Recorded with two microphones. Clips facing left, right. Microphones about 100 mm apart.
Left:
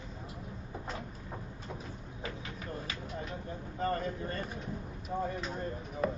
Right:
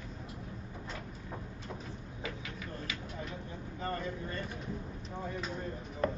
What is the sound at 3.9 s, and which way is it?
Vehicle, 50° left (ahead or behind).